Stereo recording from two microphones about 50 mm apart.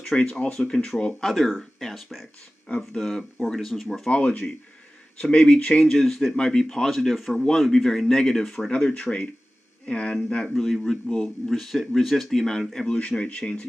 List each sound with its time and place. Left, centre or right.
0.1 s speech: left
1.2 s speech: centre
2.9 s speech: centre
4.1 s speech: left
5.7 s speech: centre
8.7 s speech: left
12.7 s speech: centre